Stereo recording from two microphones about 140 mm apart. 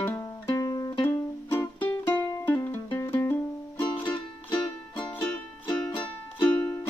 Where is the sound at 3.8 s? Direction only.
35° left (ahead or behind).